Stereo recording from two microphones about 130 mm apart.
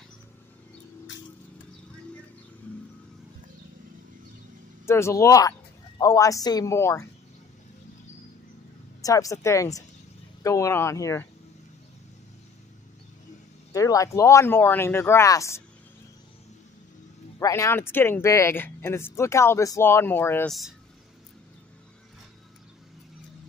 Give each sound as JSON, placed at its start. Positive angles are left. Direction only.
{"t": 4.8, "sound": "a woman's voice", "side_deg": 20}
{"t": 9.0, "sound": "speech", "side_deg": 25}
{"t": 13.7, "sound": "speech", "side_deg": 25}
{"t": 17.4, "sound": "speech", "side_deg": 25}
{"t": 20.4, "sound": "speech", "side_deg": 0}